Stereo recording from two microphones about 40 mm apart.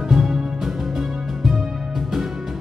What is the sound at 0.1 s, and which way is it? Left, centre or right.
Music, centre.